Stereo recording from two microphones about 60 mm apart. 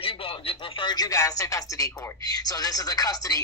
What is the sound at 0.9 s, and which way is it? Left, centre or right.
Speech, left.